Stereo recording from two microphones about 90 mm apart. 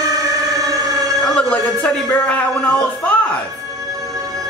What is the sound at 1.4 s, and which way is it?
A man's voice, 15° left (ahead or behind).